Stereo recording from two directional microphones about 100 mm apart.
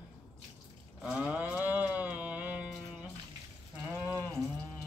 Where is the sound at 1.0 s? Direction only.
10° right (ahead or behind).